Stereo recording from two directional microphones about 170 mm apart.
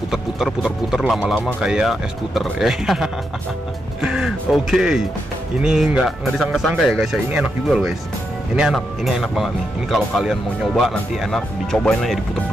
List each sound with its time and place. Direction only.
0.1 s speech: 5° right (ahead or behind)